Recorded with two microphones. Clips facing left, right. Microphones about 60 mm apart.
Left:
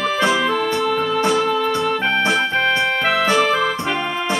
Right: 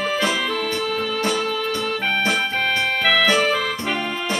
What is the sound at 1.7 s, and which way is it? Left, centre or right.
Keyboard, left.